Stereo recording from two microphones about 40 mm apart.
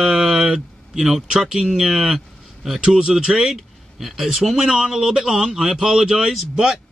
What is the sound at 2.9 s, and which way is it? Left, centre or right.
Speech, centre.